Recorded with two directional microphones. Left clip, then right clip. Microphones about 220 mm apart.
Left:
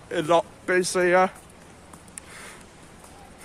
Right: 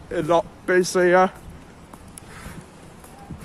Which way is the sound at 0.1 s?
10° left (ahead or behind).